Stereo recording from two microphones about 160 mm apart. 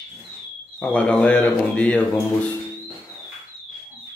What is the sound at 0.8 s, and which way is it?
A man's voice, 5° left (ahead or behind).